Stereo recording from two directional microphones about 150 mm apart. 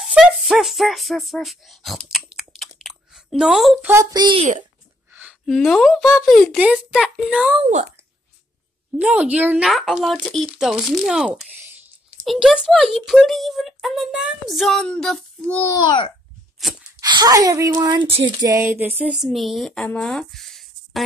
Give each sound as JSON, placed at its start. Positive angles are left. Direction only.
{"t": 0.0, "sound": "speech", "side_deg": 0}
{"t": 2.3, "sound": "chewing", "side_deg": 0}
{"t": 3.8, "sound": "a woman's voice", "side_deg": -20}
{"t": 5.4, "sound": "a child's voice", "side_deg": 0}
{"t": 8.9, "sound": "a child's voice", "side_deg": -10}
{"t": 15.8, "sound": "a child's voice", "side_deg": 30}
{"t": 17.0, "sound": "a woman's voice", "side_deg": -25}
{"t": 19.0, "sound": "speech", "side_deg": 0}